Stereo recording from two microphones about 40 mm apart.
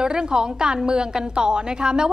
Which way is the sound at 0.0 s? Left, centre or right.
Centre.